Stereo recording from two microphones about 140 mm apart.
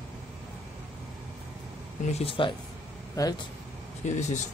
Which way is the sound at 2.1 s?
45° left (ahead or behind).